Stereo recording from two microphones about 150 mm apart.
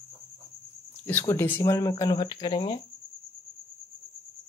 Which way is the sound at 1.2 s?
15° left (ahead or behind).